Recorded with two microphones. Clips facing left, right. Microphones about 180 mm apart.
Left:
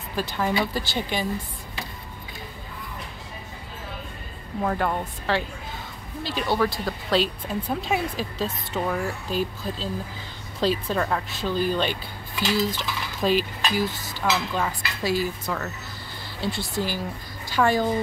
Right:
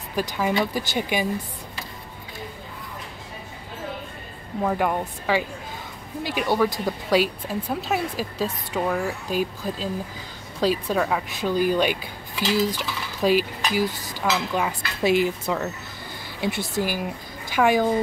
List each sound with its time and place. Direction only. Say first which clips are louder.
0.1 s speech: right 2 dB; 10° right (ahead or behind)
4.6 s speech: right 2 dB; 10° right (ahead or behind)
12.5 s cutlery: right 3 dB; 10° right (ahead or behind)
14.5 s speech: right 2 dB; 15° right (ahead or behind)